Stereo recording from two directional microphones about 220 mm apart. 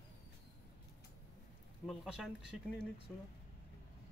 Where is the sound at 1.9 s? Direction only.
5° right (ahead or behind).